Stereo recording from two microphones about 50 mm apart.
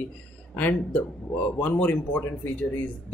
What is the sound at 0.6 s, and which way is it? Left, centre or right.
Speech, left.